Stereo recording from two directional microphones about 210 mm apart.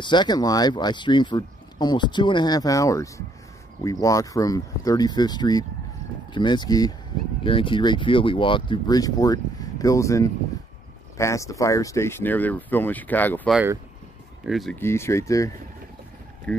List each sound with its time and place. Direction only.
0.0 s speech: 20° left (ahead or behind); by 14.8 s centre (ahead or behind)
14.8 s speech: 10° left (ahead or behind)